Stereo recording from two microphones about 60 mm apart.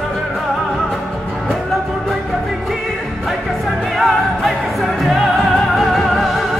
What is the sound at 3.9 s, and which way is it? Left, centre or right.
Music, centre.